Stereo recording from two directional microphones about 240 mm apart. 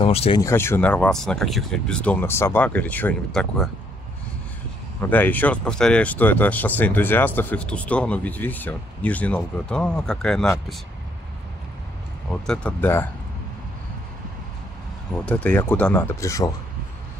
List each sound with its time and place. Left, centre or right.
0.0 s speech: left
0.4 s speech: centre
5.1 s speech: centre
12.4 s speech: centre
15.2 s speech: centre